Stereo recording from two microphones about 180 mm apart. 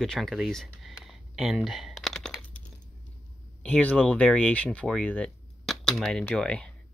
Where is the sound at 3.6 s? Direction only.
10° left (ahead or behind).